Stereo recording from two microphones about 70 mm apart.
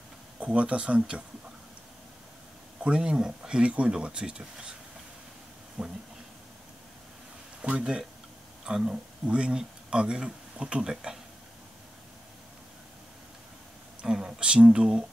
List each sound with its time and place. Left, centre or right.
0.4 s speech: centre
2.8 s speech: centre
5.8 s speech: centre
7.6 s speech: centre
14.0 s speech: centre